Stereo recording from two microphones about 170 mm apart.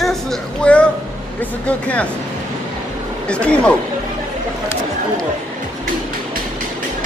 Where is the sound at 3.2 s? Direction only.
5° left (ahead or behind).